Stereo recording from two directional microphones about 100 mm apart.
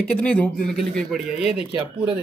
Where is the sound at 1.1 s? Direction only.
5° right (ahead or behind).